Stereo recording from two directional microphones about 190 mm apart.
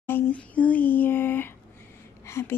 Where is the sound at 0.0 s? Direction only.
10° left (ahead or behind).